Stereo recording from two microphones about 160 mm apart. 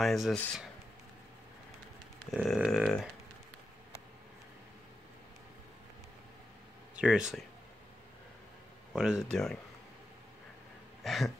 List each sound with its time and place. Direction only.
0.0 s speech: centre (ahead or behind)
2.4 s speech: centre (ahead or behind)
7.0 s speech: 5° right (ahead or behind)
8.9 s speech: 5° right (ahead or behind)
11.1 s speech: centre (ahead or behind)